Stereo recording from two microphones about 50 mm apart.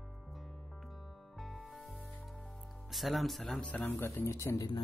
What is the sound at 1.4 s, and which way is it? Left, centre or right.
Music, centre.